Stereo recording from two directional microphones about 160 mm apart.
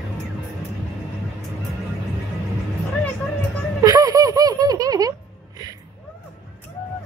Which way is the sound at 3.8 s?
25° right (ahead or behind).